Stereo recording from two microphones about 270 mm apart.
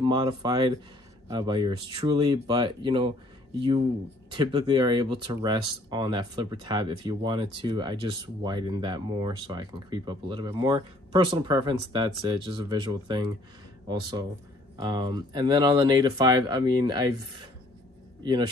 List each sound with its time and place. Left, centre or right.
0.0 s speech: centre